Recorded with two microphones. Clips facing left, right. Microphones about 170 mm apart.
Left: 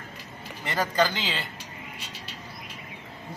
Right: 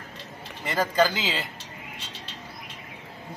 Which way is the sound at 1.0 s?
5° right (ahead or behind).